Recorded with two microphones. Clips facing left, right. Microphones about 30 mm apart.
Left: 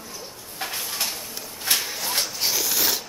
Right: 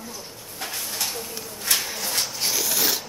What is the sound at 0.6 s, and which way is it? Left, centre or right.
Bird, centre.